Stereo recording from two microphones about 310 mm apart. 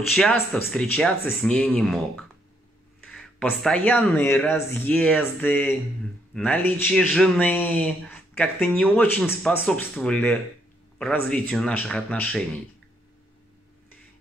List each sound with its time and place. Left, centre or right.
0.1 s speech: centre